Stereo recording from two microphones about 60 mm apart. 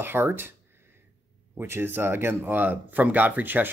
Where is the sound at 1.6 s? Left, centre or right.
Right.